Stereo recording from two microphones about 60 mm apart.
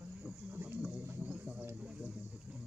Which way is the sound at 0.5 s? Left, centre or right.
Right.